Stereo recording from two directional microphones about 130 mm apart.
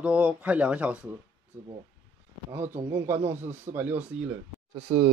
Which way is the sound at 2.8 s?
20° right (ahead or behind).